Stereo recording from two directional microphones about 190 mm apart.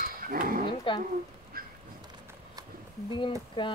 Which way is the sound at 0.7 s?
25° left (ahead or behind).